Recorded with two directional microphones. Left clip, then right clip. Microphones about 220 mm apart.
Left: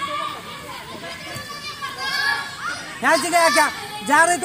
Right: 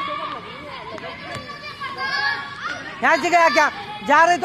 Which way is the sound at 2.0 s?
35° right (ahead or behind).